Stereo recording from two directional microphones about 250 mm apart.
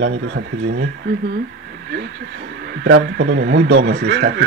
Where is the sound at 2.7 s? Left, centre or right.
Right.